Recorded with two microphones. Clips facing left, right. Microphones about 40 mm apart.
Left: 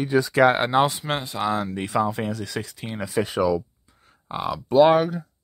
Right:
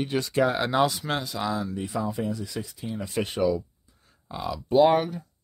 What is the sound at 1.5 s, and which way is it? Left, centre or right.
Speech, left.